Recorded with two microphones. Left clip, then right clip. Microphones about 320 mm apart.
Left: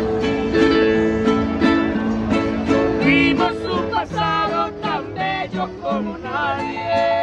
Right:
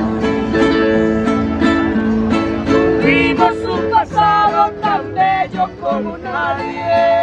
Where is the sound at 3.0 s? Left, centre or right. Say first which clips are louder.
Right 4 dB; centre.